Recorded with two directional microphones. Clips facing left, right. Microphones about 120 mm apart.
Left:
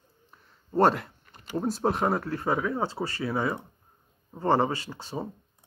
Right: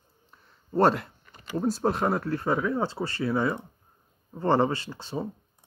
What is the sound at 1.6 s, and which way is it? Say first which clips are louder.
Speech: right 1 dB; 20° left (ahead or behind).